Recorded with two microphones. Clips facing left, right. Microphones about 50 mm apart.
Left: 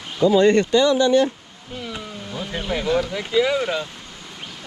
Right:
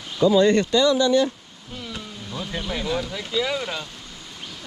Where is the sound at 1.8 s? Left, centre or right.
Centre.